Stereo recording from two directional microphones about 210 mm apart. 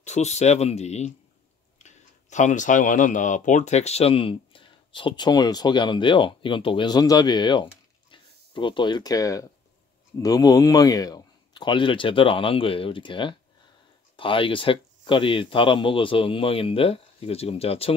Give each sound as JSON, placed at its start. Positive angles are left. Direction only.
{"t": 0.0, "sound": "speech", "side_deg": 30}